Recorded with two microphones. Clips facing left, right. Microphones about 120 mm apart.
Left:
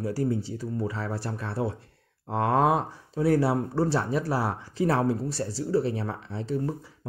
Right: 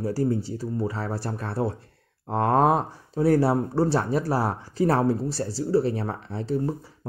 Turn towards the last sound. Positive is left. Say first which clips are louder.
# right 3 dB
turn(degrees=-40)  # may be behind; listen again after turning